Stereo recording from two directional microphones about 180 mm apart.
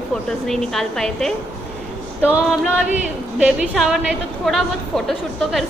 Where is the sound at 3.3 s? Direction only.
5° right (ahead or behind).